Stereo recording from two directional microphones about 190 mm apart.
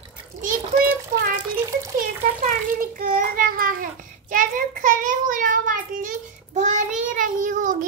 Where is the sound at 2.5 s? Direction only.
45° right (ahead or behind).